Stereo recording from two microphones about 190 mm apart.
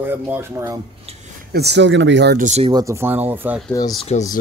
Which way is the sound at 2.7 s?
15° right (ahead or behind).